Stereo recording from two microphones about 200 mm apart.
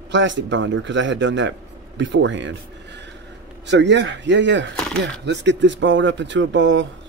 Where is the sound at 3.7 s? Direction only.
60° right (ahead or behind).